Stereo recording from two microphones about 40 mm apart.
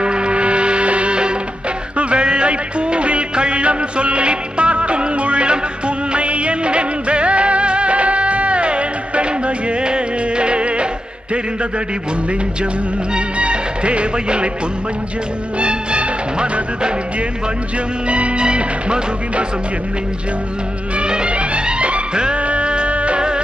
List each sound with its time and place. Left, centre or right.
0.0 s music: right
2.0 s music of bollywood: right
13.1 s music: right
15.6 s music: right
18.0 s music: right
21.0 s music: right